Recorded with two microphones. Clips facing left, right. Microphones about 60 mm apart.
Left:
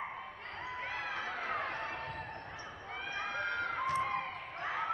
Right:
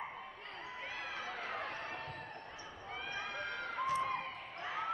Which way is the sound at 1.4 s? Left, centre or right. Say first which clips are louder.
Left 5 dB; left.